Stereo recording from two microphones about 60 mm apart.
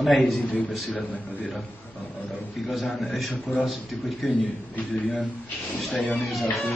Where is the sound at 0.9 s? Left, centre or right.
Left.